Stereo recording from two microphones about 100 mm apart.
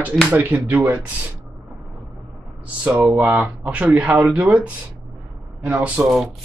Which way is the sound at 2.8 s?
15° right (ahead or behind).